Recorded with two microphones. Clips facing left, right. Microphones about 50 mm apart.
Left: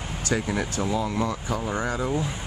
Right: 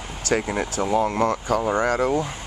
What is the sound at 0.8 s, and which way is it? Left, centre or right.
Speech, right.